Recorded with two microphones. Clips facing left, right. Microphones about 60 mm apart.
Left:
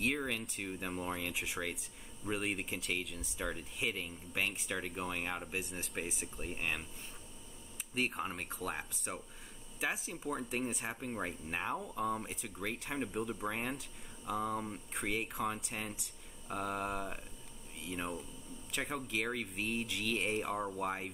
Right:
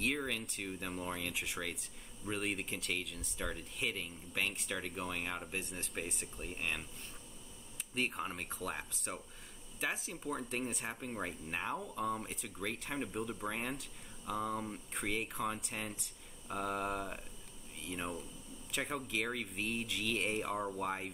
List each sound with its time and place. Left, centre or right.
0.0 s speech: centre
7.9 s speech: centre